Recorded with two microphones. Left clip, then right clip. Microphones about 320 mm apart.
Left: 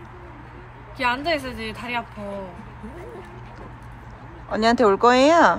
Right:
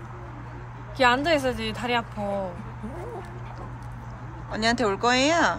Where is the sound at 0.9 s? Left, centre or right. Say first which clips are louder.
Right 2 dB; right.